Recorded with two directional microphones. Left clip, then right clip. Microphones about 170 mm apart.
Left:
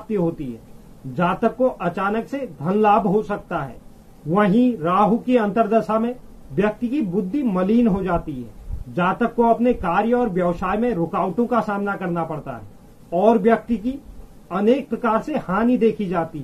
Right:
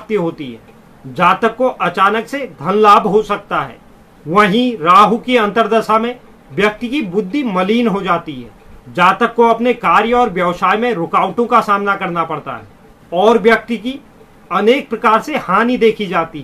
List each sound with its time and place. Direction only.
1.1 s speech: centre (ahead or behind)
14.5 s speech: centre (ahead or behind)